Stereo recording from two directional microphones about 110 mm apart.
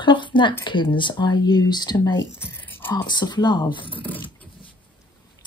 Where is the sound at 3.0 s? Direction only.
40° left (ahead or behind).